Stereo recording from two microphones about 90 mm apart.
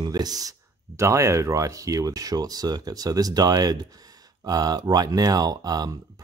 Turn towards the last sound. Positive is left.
turn(degrees=-45)  # may be behind; listen again after turning